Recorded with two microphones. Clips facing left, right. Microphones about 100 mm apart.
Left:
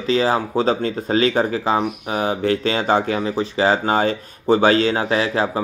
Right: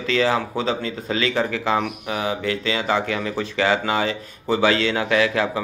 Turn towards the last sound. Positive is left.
turn(degrees=35)  # may be behind; listen again after turning